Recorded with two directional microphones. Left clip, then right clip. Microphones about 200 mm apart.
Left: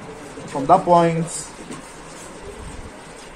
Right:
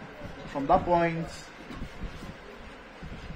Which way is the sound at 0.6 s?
15° left (ahead or behind).